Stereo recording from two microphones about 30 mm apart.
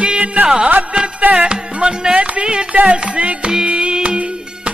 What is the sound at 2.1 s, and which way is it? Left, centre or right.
Music, right.